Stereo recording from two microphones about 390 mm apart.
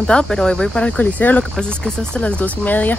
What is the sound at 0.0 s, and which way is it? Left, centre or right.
Speech, centre.